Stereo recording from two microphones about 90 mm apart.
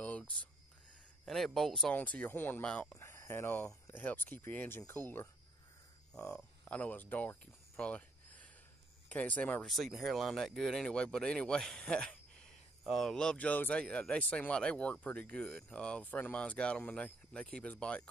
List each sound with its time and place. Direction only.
0.0 s a sound: 15° left (ahead or behind)
1.2 s speech: centre (ahead or behind)
2.9 s speech: 30° left (ahead or behind)
6.1 s speech: 10° left (ahead or behind)
9.1 s speech: 15° left (ahead or behind)
9.7 s speech: centre (ahead or behind)